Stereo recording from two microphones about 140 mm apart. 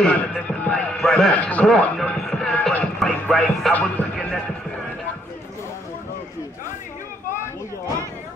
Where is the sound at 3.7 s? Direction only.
10° left (ahead or behind).